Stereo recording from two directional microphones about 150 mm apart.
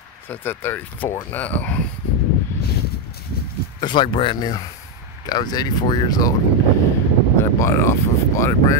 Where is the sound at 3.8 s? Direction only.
35° left (ahead or behind).